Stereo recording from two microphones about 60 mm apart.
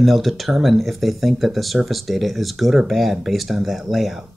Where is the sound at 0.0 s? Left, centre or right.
Centre.